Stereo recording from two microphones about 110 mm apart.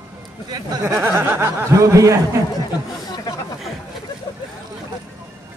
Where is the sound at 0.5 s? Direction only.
35° right (ahead or behind).